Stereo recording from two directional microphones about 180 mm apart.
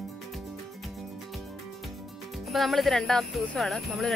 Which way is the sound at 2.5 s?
Centre (ahead or behind).